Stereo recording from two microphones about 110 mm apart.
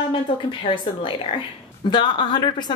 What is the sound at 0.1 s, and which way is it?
A woman's voice, 50° left (ahead or behind).